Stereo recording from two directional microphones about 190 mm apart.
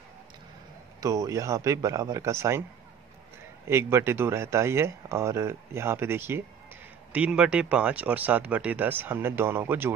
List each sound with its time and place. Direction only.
1.0 s speech: 15° right (ahead or behind)
3.6 s speech: 15° right (ahead or behind)